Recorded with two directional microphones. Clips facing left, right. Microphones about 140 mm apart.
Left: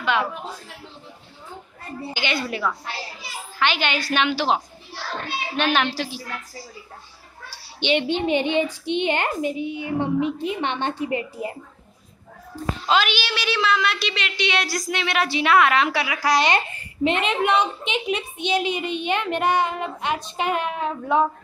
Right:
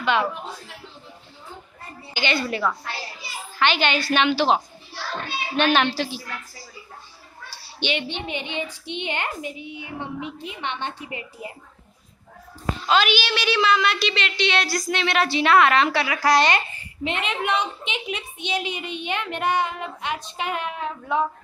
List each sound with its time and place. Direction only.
0.0 s a man's voice: 5° left (ahead or behind)
2.1 s a woman's voice: 10° left (ahead or behind)
5.6 s a woman's voice: 5° left (ahead or behind)
7.9 s a woman's voice: 40° left (ahead or behind)
12.9 s a woman's voice: centre (ahead or behind)
16.5 s a child's voice: 40° left (ahead or behind)